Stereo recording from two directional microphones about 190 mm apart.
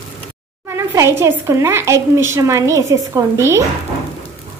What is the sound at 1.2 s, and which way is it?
A woman's voice, 15° right (ahead or behind).